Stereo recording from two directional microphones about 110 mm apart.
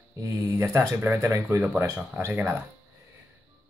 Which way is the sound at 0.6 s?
25° right (ahead or behind).